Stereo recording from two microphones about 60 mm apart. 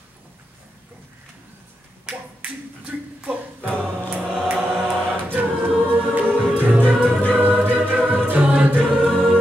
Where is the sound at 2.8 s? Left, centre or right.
Centre.